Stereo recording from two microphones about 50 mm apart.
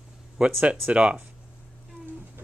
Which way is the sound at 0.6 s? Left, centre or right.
Right.